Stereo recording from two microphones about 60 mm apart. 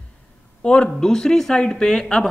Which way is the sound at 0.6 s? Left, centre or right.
Centre.